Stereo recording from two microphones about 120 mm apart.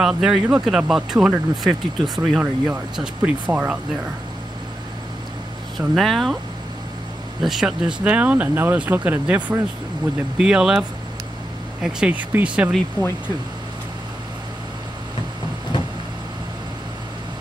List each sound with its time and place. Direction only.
0.0 s speech: 5° right (ahead or behind)
5.8 s speech: centre (ahead or behind)
7.4 s speech: 5° right (ahead or behind)
10.3 s speech: 5° right (ahead or behind)
13.0 s speech: 35° right (ahead or behind)